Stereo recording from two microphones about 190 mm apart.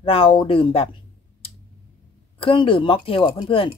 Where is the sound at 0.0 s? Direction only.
30° left (ahead or behind).